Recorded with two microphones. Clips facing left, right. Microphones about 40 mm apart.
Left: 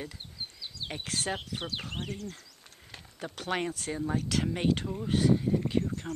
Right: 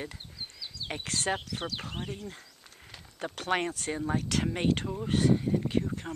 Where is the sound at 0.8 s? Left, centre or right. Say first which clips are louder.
Right 1 dB; left.